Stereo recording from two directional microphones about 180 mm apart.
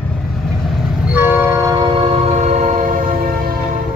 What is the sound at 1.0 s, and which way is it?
Train, 10° right (ahead or behind).